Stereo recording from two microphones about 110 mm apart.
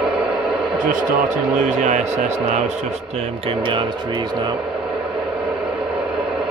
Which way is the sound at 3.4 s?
50° right (ahead or behind).